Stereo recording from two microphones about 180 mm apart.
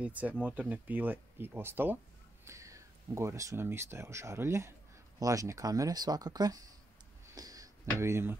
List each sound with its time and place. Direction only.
0.0 s speech: 10° right (ahead or behind)
7.3 s music: 20° right (ahead or behind)